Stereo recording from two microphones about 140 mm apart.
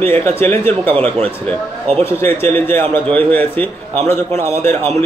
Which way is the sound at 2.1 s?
15° left (ahead or behind).